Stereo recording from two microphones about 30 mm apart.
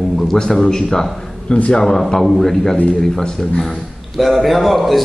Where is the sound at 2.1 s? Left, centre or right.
Centre.